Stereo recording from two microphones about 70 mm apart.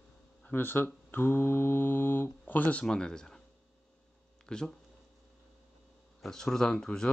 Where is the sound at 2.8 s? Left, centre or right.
Centre.